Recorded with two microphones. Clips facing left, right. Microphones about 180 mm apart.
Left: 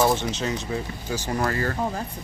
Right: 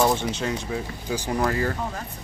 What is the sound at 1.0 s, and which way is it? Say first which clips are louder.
Speech: right 2 dB; 10° right (ahead or behind).